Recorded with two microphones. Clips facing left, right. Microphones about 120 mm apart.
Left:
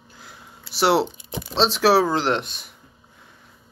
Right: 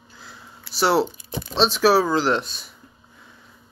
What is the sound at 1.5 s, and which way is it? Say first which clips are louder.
Speech: even; 90° left.